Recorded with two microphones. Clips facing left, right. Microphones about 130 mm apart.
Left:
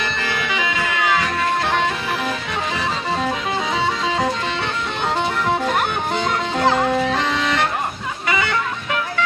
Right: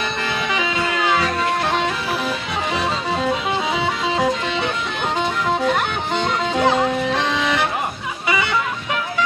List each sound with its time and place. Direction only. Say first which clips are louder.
6.1 s music: right 4 dB; centre (ahead or behind)